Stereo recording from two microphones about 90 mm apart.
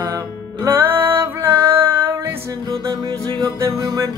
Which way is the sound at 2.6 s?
35° right (ahead or behind).